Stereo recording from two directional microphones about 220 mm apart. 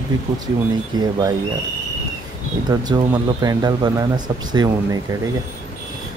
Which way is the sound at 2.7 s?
15° right (ahead or behind).